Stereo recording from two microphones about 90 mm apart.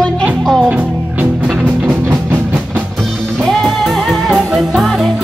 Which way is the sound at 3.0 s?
Centre (ahead or behind).